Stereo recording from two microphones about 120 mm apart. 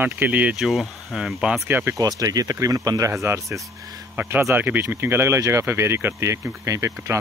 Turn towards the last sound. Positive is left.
turn(degrees=-25)  # may be behind; listen again after turning